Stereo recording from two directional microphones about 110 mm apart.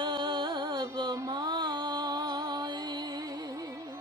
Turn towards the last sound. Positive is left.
turn(degrees=-35)  # may be behind; listen again after turning